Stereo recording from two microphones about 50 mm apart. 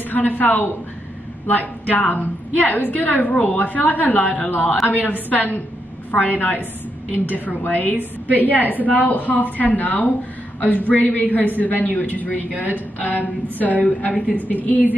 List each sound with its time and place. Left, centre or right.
0.1 s a woman's voice: left